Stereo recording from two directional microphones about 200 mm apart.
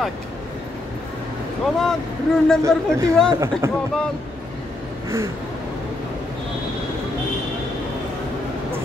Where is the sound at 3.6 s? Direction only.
15° right (ahead or behind).